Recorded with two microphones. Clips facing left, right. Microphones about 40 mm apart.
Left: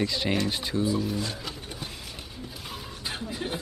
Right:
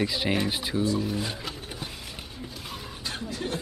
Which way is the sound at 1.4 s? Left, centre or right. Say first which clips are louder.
Right 1 dB; centre.